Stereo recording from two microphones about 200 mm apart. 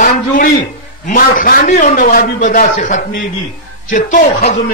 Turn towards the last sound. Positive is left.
turn(degrees=35)  # may be behind; listen again after turning